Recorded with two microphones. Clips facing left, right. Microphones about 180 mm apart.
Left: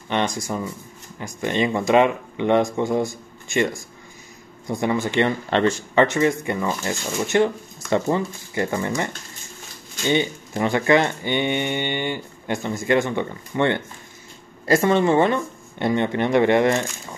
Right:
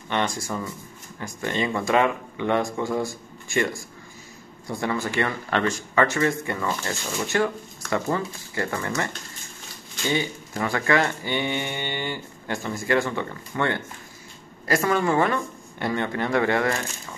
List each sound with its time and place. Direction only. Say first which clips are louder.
0.1 s speech: left 3 dB; 20° left (ahead or behind)